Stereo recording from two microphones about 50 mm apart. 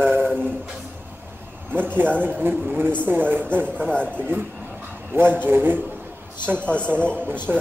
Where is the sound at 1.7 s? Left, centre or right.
Right.